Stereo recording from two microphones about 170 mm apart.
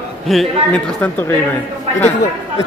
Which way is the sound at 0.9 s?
15° left (ahead or behind).